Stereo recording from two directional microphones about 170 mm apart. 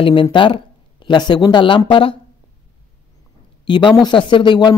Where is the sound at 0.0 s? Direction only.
30° left (ahead or behind).